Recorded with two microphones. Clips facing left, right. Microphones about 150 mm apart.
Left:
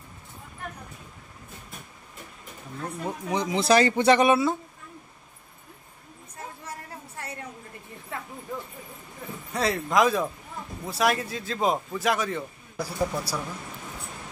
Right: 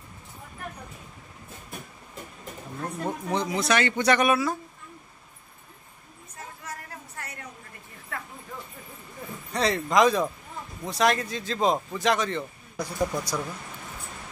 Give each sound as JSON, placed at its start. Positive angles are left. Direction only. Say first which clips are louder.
{"t": 2.8, "sound": "speech", "louder": "right 1 dB", "side_deg": -5}
{"t": 3.3, "sound": "speech", "louder": "left 1 dB", "side_deg": 15}
{"t": 3.5, "sound": "speech", "louder": "left 6 dB", "side_deg": 30}
{"t": 8.1, "sound": "a sound", "louder": "left 1 dB", "side_deg": 25}
{"t": 9.5, "sound": "a man's voice", "louder": "right 1 dB", "side_deg": 5}